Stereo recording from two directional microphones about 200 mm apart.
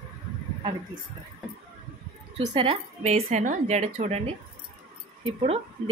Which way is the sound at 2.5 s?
25° right (ahead or behind).